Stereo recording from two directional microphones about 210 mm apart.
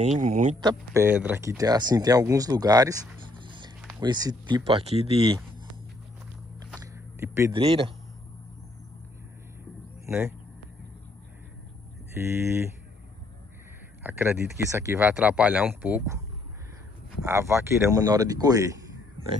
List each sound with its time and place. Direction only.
0.0 s speech: 35° right (ahead or behind)
0.6 s speech: 15° right (ahead or behind)
7.2 s speech: 10° right (ahead or behind)
7.5 s speech: 25° right (ahead or behind)
10.0 s speech: 5° right (ahead or behind)
12.2 s speech: 10° right (ahead or behind)
14.0 s speech: 10° right (ahead or behind)
17.2 s speech: 15° right (ahead or behind)